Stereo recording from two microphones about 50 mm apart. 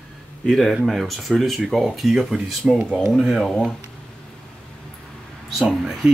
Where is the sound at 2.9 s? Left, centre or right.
Centre.